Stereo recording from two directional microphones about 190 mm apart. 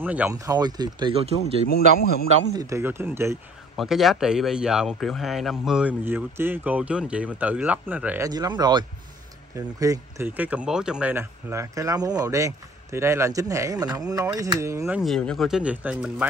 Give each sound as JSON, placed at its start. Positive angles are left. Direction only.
{"t": 0.0, "sound": "speech", "side_deg": -10}
{"t": 0.5, "sound": "speech", "side_deg": -20}
{"t": 2.5, "sound": "speech", "side_deg": -15}
{"t": 3.7, "sound": "speech", "side_deg": 0}
{"t": 8.3, "sound": "speech", "side_deg": -20}
{"t": 15.0, "sound": "speech", "side_deg": 0}